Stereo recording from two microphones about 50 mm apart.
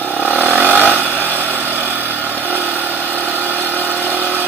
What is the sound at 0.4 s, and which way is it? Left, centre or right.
Vehicle, right.